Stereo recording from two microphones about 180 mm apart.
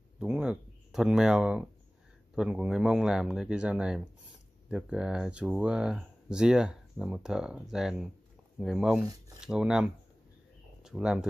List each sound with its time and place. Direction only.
0.2 s speech: 5° right (ahead or behind)